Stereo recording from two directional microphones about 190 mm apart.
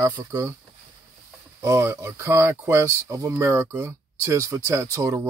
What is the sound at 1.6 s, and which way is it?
Speech, 15° right (ahead or behind).